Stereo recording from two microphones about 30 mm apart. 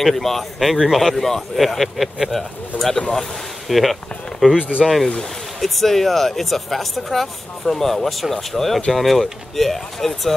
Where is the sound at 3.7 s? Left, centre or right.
Centre.